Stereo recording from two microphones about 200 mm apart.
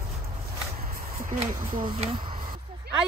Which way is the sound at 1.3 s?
30° right (ahead or behind).